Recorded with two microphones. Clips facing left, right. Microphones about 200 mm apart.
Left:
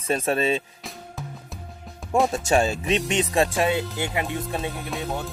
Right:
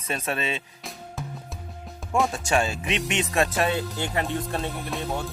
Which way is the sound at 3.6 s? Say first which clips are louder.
Left 2 dB; 20° left (ahead or behind).